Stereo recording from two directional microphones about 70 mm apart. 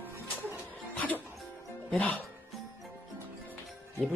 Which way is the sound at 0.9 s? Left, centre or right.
Left.